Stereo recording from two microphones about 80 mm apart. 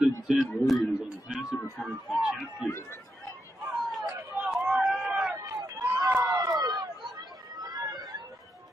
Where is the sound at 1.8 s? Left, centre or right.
Centre.